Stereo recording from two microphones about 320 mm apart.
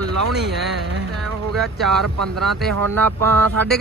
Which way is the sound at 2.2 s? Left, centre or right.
Right.